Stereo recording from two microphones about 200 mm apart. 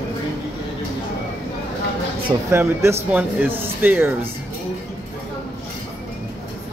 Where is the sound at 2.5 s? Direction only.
15° right (ahead or behind).